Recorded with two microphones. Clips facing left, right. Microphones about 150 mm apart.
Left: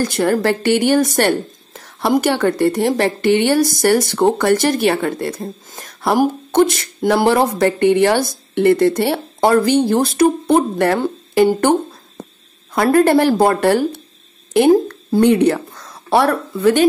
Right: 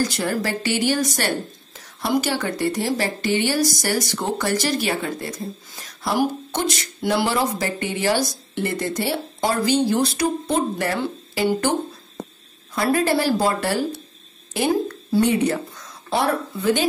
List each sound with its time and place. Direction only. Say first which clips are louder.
0.0 s a woman's voice: left 7 dB; 55° left (ahead or behind)
12.7 s a woman's voice: left 8 dB; 55° left (ahead or behind)